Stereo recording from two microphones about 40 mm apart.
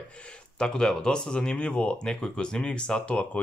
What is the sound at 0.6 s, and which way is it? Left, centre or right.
Speech, centre.